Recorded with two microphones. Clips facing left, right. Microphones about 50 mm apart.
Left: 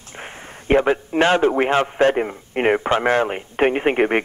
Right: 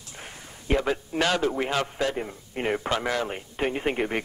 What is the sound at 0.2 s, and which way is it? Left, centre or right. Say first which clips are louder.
A man's voice: left 8 dB; left.